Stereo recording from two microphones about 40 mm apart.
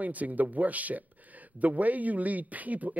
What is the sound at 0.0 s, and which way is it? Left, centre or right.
Speech, right.